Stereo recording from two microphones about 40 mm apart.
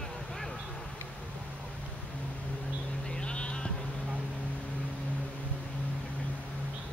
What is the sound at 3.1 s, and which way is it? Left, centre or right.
Music, left.